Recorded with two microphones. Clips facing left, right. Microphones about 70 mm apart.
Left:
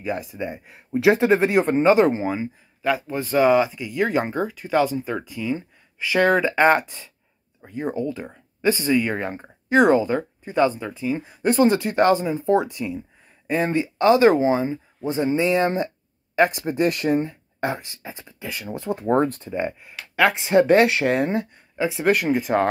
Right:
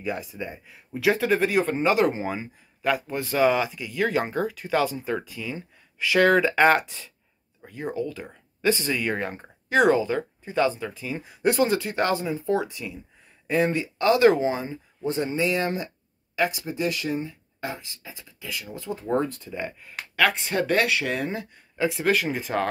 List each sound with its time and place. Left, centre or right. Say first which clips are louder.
0.0 s speech: left 3 dB; centre
0.7 s speech: left 6 dB; left
2.2 s speech: left 5 dB; centre
9.9 s speech: left 4 dB; left
10.9 s speech: left 7 dB; centre; by 19.5 s left
20.2 s speech: left 6 dB; left
21.4 s speech: left 3 dB; centre